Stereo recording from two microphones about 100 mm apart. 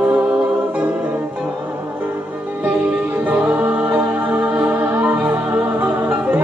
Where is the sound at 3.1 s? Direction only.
15° right (ahead or behind).